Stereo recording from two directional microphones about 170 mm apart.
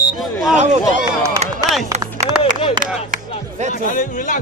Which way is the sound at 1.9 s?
45° right (ahead or behind).